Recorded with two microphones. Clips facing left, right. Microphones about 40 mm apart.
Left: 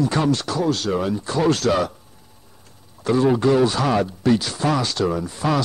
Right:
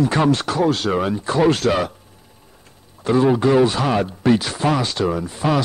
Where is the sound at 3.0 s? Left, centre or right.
Centre.